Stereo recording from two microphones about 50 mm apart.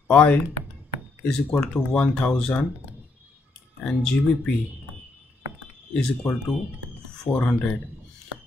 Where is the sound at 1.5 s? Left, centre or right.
Left.